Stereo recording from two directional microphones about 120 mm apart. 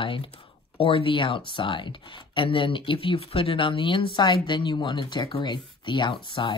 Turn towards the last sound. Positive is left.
turn(degrees=45)  # may be behind; listen again after turning